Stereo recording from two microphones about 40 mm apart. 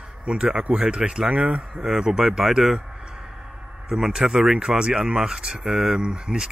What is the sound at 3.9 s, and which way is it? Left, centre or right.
Speech, centre.